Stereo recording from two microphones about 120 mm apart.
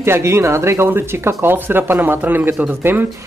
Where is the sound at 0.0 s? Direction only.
20° right (ahead or behind).